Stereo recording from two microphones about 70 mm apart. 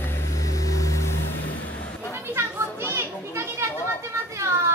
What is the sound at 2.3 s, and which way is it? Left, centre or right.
Children playing, right.